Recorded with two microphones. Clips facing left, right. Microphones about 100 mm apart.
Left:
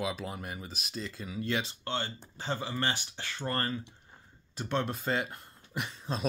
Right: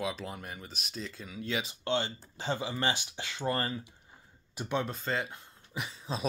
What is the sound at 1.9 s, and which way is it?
Speech, 20° right (ahead or behind).